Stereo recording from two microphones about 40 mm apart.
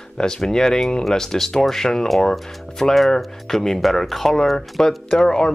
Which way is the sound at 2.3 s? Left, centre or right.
Centre.